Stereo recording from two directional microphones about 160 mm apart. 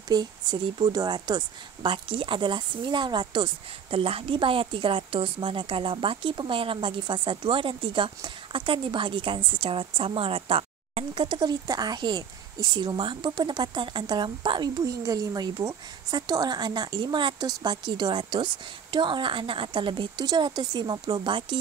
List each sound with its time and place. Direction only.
0.1 s a woman's voice: 25° right (ahead or behind)